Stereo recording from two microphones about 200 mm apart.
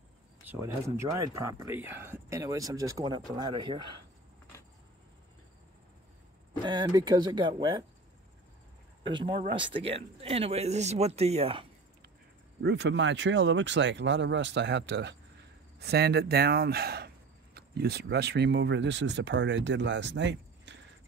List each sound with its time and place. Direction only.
0.5 s speech: 15° right (ahead or behind)
6.6 s speech: 20° right (ahead or behind)
9.1 s speech: 25° right (ahead or behind)
12.6 s speech: 60° right (ahead or behind)